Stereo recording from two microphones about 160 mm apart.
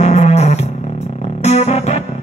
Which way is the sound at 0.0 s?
45° left (ahead or behind).